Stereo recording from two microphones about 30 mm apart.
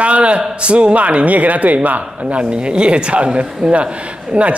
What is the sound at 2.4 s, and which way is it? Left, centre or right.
A man's voice, right.